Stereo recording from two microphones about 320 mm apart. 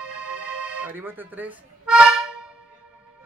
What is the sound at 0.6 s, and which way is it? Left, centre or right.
Music, centre.